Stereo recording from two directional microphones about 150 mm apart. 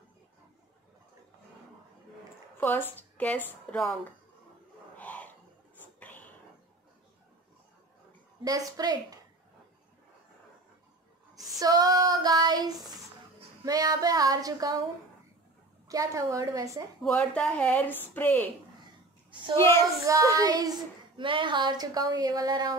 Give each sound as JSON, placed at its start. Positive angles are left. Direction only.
{"t": 2.5, "sound": "a woman's voice", "side_deg": 15}
{"t": 4.9, "sound": "a sound", "side_deg": 10}
{"t": 8.5, "sound": "speech", "side_deg": -25}
{"t": 11.6, "sound": "child singing", "side_deg": -25}
{"t": 13.7, "sound": "speech", "side_deg": -25}
{"t": 15.9, "sound": "speech", "side_deg": -20}
{"t": 17.0, "sound": "speech", "side_deg": 5}
{"t": 19.5, "sound": "speech", "side_deg": 20}
{"t": 20.1, "sound": "speech", "side_deg": -20}